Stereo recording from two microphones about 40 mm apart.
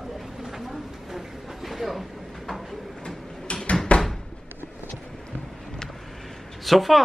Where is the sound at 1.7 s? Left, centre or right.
Centre.